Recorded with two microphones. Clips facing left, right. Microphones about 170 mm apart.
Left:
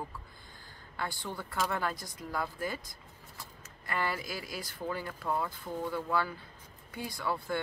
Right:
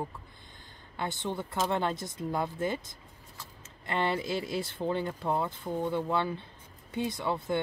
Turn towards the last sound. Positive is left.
turn(degrees=-20)  # may be behind; listen again after turning